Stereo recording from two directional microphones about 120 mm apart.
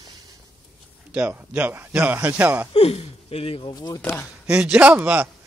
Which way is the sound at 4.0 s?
20° left (ahead or behind).